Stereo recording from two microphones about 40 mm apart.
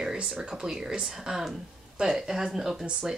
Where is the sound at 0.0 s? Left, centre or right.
Right.